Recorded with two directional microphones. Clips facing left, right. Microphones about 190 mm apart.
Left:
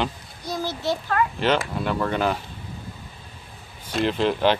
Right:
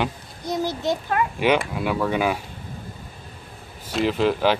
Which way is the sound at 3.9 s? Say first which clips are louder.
Right 1 dB; 5° right (ahead or behind).